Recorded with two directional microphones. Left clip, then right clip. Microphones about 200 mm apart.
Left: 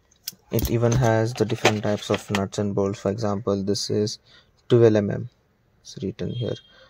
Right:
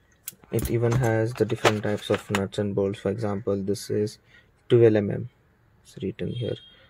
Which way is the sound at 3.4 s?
30° left (ahead or behind).